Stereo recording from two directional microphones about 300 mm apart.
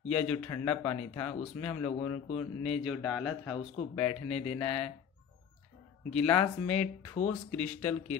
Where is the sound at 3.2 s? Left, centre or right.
Centre.